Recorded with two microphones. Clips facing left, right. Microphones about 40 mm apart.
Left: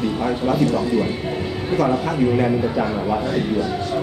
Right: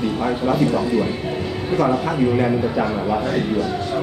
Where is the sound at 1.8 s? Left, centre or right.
Centre.